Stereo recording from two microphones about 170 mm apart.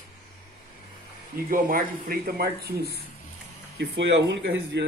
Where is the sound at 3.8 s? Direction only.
90° right.